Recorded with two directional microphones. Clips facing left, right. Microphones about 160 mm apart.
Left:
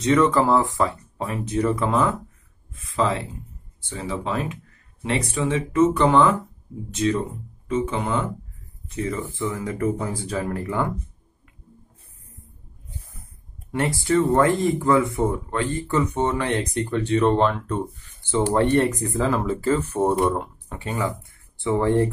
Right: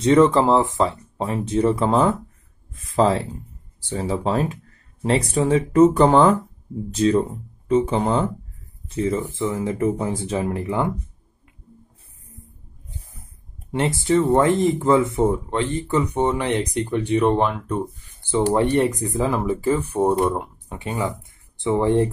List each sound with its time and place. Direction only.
0.0 s speech: 30° right (ahead or behind)
13.7 s speech: 20° right (ahead or behind)